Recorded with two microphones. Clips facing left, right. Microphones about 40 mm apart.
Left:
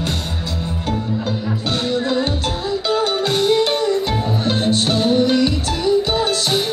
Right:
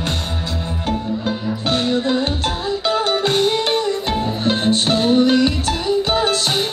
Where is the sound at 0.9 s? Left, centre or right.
Right.